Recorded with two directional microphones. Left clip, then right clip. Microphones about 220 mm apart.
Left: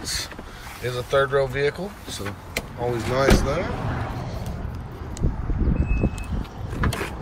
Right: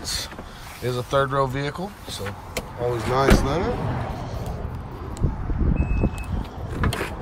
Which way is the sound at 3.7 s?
45° right (ahead or behind).